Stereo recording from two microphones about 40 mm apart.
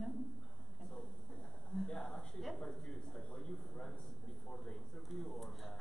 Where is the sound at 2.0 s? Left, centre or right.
Centre.